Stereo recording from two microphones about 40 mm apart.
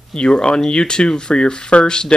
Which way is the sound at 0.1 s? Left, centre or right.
Centre.